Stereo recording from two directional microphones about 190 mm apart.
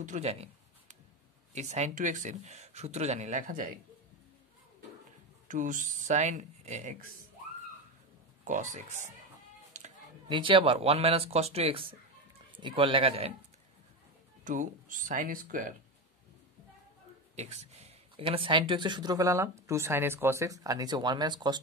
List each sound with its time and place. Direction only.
0.0 s speech: 35° right (ahead or behind)
5.5 s speech: 45° right (ahead or behind)
8.5 s speech: 40° right (ahead or behind)
9.8 s a sound: 40° right (ahead or behind)
10.2 s speech: 25° right (ahead or behind)
14.4 s speech: 45° right (ahead or behind)
17.4 s speech: 35° right (ahead or behind)